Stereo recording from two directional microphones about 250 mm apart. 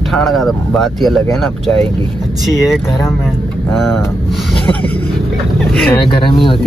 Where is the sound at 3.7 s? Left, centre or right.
Centre.